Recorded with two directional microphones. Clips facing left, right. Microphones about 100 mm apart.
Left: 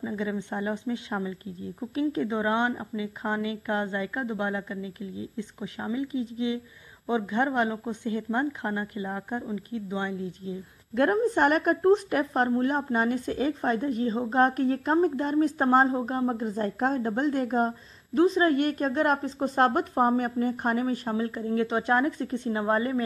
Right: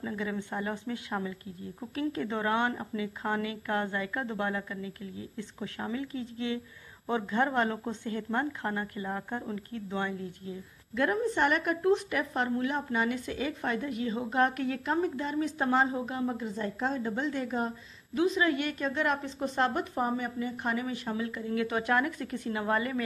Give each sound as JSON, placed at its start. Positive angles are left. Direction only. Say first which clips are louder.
{"t": 0.0, "sound": "speech", "louder": "left 4 dB", "side_deg": 20}
{"t": 11.0, "sound": "a woman's voice", "louder": "left 5 dB", "side_deg": 45}